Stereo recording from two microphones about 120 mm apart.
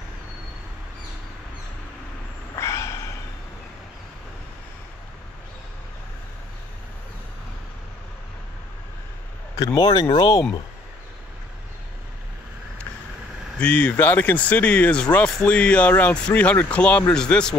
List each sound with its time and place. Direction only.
2.5 s gasp: 25° left (ahead or behind)
9.8 s speech: 35° left (ahead or behind)
13.6 s speech: 10° left (ahead or behind)